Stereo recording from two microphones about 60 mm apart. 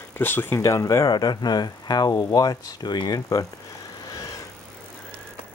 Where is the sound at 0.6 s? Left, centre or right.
Left.